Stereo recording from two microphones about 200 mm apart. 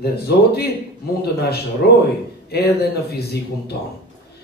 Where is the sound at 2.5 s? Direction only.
50° left (ahead or behind).